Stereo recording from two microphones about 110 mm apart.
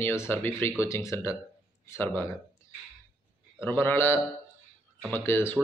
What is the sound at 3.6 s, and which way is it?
Speech, 20° left (ahead or behind).